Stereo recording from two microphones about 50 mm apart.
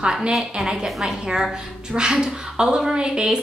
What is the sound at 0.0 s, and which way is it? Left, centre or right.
A woman's voice, centre.